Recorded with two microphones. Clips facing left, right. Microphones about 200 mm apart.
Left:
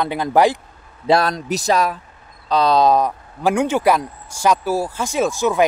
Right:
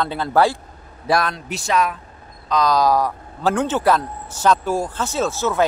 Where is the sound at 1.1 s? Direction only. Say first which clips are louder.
Left 4 dB; 35° left (ahead or behind).